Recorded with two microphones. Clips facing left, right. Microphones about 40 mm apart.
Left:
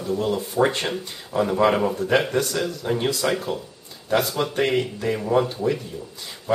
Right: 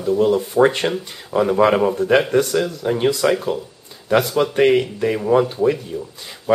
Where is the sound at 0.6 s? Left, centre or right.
Centre.